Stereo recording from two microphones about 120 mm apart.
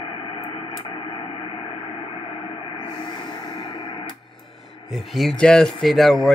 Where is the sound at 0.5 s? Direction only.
45° left (ahead or behind).